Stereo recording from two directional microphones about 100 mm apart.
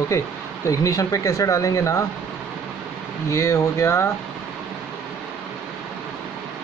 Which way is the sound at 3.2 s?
30° left (ahead or behind).